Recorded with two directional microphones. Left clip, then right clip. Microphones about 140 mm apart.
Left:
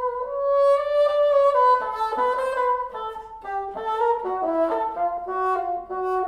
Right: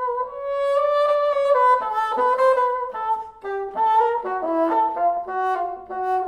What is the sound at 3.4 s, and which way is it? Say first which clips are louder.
Brass instrument: right 4 dB; 35° right (ahead or behind).